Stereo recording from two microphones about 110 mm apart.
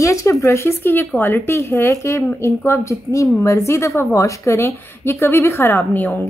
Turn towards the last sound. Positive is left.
turn(degrees=15)  # may be behind; listen again after turning